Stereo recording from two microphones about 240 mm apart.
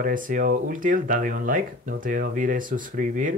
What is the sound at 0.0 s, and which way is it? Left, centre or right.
Speech, right.